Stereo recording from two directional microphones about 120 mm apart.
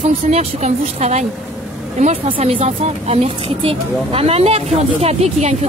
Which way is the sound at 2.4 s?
60° right (ahead or behind).